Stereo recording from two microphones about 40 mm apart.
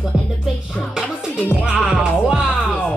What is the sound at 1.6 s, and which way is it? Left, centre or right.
Music, right.